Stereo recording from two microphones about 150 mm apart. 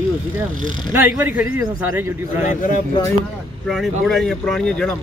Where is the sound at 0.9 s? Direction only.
10° right (ahead or behind).